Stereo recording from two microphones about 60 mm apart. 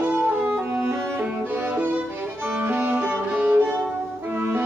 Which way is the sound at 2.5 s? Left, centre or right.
Right.